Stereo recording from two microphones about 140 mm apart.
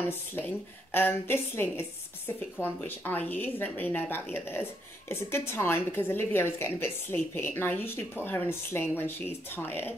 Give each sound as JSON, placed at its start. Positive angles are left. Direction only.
{"t": 0.9, "sound": "a woman's voice", "side_deg": 15}